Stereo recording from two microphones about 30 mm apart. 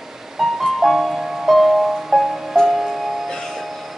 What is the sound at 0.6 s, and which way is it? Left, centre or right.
Music, centre.